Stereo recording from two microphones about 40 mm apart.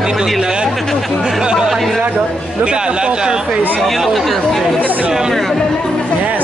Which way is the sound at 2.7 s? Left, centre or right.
Right.